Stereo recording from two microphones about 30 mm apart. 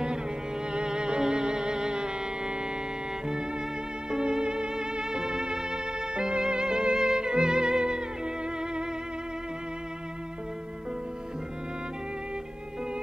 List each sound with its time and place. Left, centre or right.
0.7 s music: right
4.1 s music: right